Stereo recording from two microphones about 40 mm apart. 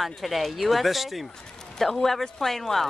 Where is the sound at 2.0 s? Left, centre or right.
Centre.